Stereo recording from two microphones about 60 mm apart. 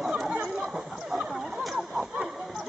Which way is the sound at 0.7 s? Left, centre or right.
Centre.